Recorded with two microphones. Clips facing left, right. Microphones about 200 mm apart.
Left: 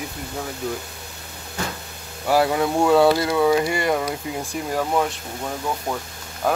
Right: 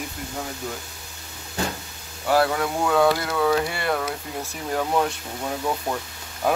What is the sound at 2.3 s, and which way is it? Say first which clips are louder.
Speech: left 2 dB; 15° left (ahead or behind).